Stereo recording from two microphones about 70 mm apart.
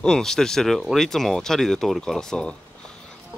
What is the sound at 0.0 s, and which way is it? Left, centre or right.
Speech, centre.